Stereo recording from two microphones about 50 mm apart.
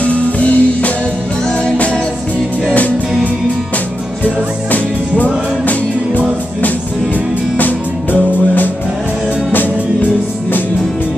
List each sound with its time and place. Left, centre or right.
0.0 s music: left
4.2 s music: left
7.5 s music: left